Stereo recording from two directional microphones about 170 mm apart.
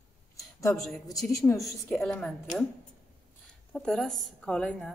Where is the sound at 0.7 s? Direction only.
Centre (ahead or behind).